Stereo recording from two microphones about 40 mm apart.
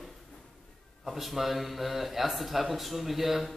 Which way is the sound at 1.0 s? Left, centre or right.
Centre.